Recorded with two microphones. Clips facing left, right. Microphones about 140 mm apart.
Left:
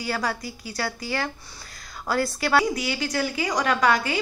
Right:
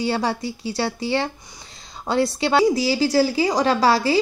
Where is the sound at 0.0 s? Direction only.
25° right (ahead or behind).